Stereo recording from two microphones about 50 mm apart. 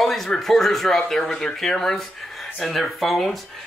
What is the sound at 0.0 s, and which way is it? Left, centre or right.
Speech, centre.